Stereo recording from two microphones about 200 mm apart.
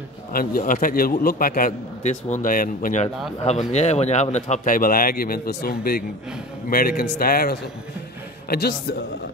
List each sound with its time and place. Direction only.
0.3 s a man's voice: 45° left (ahead or behind)